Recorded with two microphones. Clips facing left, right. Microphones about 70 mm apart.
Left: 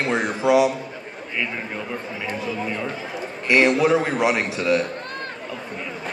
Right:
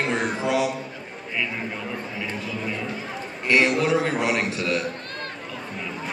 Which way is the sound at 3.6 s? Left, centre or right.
Centre.